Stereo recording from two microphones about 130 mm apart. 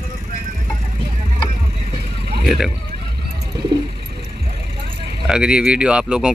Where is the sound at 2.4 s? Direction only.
Centre (ahead or behind).